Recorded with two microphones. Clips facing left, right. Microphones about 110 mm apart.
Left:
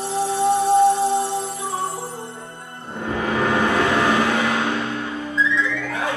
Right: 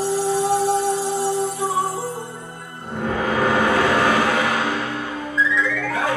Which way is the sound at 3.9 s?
20° left (ahead or behind).